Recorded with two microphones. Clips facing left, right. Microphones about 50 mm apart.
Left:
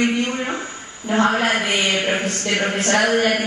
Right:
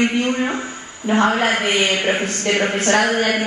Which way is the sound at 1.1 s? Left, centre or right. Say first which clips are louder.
Right 1 dB; right.